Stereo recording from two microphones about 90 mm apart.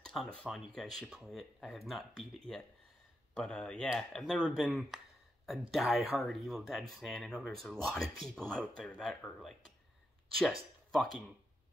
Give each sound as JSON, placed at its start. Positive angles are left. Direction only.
{"t": 0.2, "sound": "speech", "side_deg": 0}
{"t": 10.3, "sound": "speech", "side_deg": 5}